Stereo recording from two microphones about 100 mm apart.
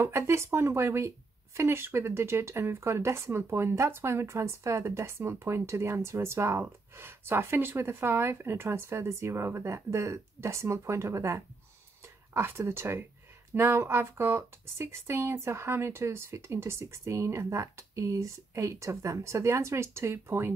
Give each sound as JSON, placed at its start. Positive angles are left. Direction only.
{"t": 0.0, "sound": "speech", "side_deg": -30}